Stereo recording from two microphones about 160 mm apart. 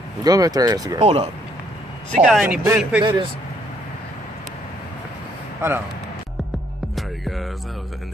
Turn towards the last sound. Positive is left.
turn(degrees=0)  # may be behind; listen again after turning